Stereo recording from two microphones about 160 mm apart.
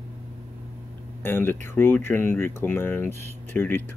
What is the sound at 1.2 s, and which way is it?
Speech, 15° left (ahead or behind).